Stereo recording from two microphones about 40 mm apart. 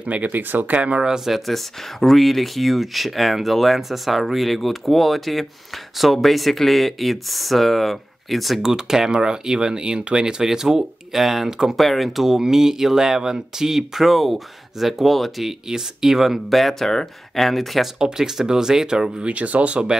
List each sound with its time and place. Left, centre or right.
0.0 s speech: right
0.3 s speech: right
0.7 s speech: right
1.0 s speech: centre
1.3 s speech: centre
8.6 s speech: centre
10.4 s speech: centre
15.7 s speech: centre
17.9 s speech: centre
19.2 s speech: right